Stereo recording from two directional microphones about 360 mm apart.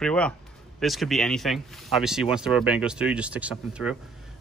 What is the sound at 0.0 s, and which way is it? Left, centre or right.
Speech, centre.